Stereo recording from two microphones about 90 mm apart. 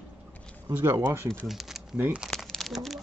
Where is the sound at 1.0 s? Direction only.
30° right (ahead or behind).